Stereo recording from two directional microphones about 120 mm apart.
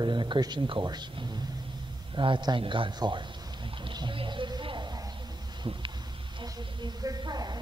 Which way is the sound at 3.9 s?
40° right (ahead or behind).